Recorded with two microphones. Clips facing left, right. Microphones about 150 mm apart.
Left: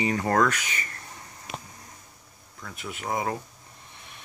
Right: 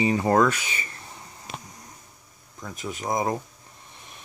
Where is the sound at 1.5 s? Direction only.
30° right (ahead or behind).